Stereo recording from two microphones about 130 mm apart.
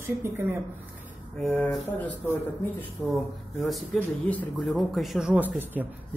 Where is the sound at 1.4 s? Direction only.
5° left (ahead or behind).